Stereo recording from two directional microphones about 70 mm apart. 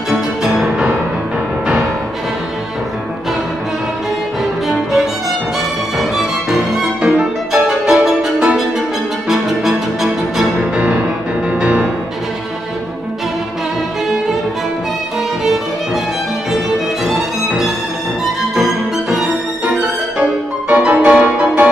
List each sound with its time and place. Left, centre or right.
0.1 s music: centre
5.9 s music: centre
7.0 s music: centre
7.5 s music: centre
10.7 s music: centre
14.1 s music: centre
15.4 s music: centre
16.7 s violin: centre
18.5 s music: centre
20.2 s music: centre